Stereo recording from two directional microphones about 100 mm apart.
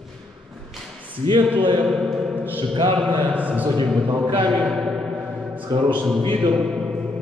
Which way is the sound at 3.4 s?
15° right (ahead or behind).